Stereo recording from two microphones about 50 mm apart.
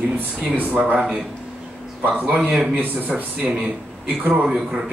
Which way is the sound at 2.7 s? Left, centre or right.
Right.